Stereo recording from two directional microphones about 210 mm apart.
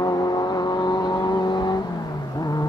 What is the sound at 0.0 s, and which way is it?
Vehicle, 20° left (ahead or behind).